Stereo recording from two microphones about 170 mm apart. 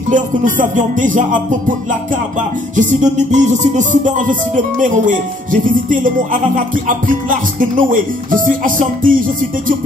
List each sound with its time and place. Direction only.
0.1 s music: 50° right (ahead or behind)
2.7 s music: 45° right (ahead or behind)